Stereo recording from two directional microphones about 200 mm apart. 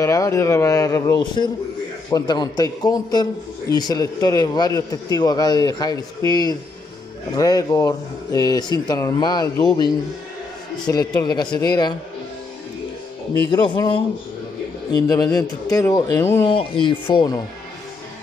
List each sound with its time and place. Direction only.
0.0 s a man's voice: 15° left (ahead or behind)
14.9 s a man's voice: 20° left (ahead or behind)